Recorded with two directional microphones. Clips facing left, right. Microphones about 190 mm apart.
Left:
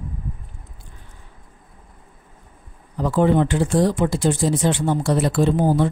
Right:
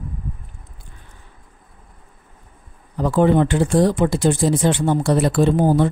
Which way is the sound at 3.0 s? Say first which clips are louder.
Right 2 dB; 55° right (ahead or behind).